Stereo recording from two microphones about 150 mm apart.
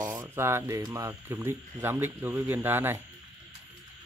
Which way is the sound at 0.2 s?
15° right (ahead or behind).